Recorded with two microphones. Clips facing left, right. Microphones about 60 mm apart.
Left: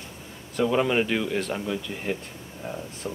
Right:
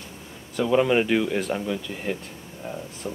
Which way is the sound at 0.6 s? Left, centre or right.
Centre.